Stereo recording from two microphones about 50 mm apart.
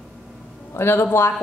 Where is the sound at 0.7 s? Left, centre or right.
Left.